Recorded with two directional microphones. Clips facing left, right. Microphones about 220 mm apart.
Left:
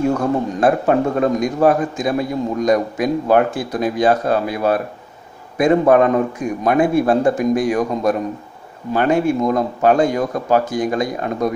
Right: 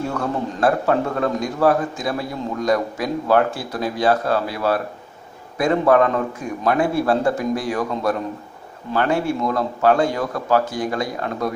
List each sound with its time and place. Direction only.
0.1 s a man's voice: 20° left (ahead or behind)